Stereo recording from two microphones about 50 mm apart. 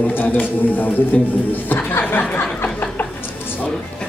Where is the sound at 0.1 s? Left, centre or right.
Left.